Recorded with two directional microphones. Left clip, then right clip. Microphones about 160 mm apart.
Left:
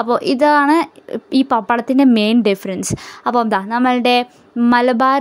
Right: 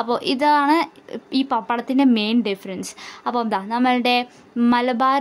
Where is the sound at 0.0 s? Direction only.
30° left (ahead or behind).